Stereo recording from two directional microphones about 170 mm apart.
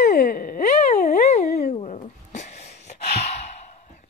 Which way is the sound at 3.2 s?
40° left (ahead or behind).